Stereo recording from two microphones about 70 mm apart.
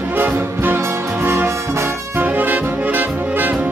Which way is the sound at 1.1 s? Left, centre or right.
Right.